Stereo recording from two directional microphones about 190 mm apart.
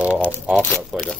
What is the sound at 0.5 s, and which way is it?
Speech, 5° left (ahead or behind).